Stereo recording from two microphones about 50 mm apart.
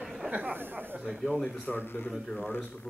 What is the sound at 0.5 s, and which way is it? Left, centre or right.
Speech, right.